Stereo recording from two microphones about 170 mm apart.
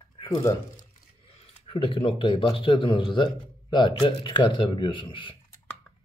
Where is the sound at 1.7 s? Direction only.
30° left (ahead or behind).